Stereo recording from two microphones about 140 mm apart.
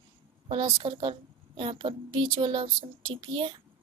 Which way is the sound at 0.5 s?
40° right (ahead or behind).